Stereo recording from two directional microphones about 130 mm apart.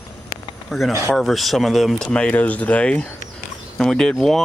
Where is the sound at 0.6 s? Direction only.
Centre (ahead or behind).